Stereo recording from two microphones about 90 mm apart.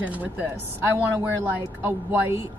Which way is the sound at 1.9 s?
25° right (ahead or behind).